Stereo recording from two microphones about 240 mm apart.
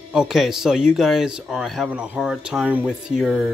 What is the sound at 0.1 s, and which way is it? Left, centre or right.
Speech, centre.